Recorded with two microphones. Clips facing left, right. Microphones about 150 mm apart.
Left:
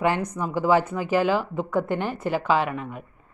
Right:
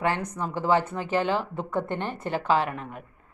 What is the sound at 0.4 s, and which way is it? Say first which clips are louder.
A woman's voice: left 3 dB; 10° left (ahead or behind).